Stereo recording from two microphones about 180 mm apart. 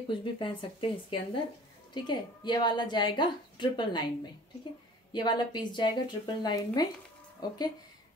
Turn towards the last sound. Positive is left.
turn(degrees=20)  # may be behind; listen again after turning